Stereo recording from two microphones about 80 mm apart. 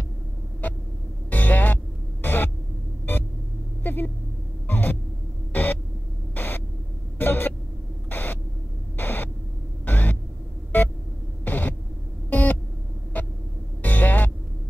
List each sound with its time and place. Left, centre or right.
0.6 s vehicle: left
1.3 s music: left
2.2 s a sound: left
3.8 s vehicle: left
4.6 s hum: left
6.3 s a sound: left
10.7 s music: left
11.4 s a sound: left
13.1 s vehicle: centre
13.8 s music: left